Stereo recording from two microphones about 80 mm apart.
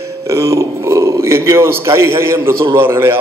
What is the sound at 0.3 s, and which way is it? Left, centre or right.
A man's voice, right.